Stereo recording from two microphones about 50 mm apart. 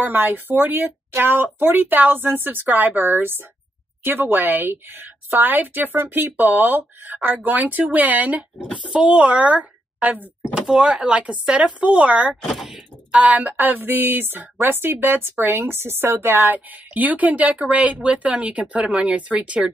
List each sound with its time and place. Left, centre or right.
0.0 s speech: right
7.3 s a sound: right
8.8 s speech: right
10.0 s a sound: right
10.5 s speech: centre
12.5 s speech: centre
13.1 s a sound: right
14.6 s speech: right
16.4 s speech: right